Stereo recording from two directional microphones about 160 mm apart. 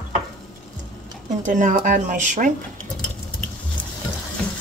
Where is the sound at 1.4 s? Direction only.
55° right (ahead or behind).